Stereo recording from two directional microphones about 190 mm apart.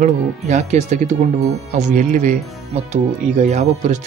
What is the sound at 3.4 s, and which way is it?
Speech, 40° right (ahead or behind).